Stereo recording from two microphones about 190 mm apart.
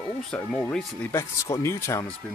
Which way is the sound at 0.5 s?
5° left (ahead or behind).